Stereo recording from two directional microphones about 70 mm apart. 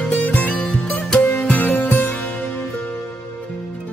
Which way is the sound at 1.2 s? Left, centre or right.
Left.